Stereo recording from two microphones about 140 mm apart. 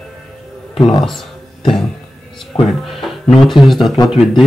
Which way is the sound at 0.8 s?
40° left (ahead or behind).